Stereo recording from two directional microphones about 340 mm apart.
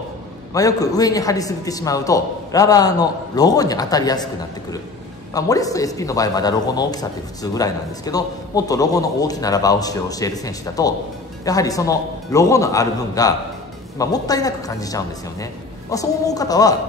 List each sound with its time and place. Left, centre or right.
0.5 s a man's voice: centre
5.3 s a man's voice: centre